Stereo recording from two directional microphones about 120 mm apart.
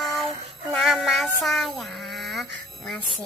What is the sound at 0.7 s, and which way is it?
Child singing, centre (ahead or behind).